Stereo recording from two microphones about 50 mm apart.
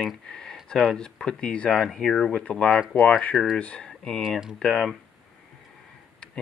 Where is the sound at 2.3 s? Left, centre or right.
Left.